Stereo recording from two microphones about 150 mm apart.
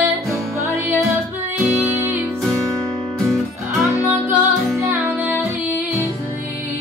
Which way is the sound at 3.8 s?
15° right (ahead or behind).